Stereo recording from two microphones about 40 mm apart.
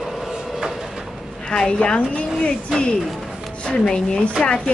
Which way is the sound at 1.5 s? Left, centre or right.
Left.